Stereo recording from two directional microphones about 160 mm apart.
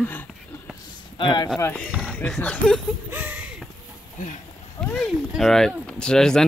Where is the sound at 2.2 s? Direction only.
5° left (ahead or behind).